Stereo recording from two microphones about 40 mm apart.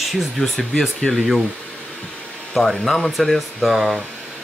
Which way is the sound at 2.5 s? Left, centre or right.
Centre.